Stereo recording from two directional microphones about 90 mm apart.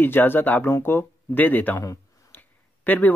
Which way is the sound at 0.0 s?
20° left (ahead or behind).